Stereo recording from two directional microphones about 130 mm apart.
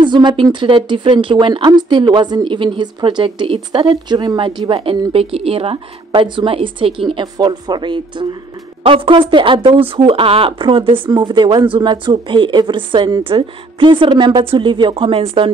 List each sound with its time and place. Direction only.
0.0 s speech: 35° right (ahead or behind)